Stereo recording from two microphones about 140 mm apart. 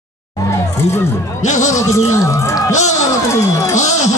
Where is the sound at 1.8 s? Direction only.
20° left (ahead or behind).